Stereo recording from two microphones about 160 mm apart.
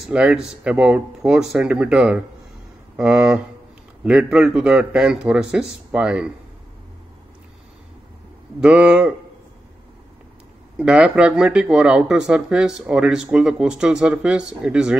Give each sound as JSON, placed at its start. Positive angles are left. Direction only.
{"t": 0.0, "sound": "speech", "side_deg": -5}
{"t": 8.5, "sound": "speech", "side_deg": -10}
{"t": 10.8, "sound": "speech", "side_deg": -5}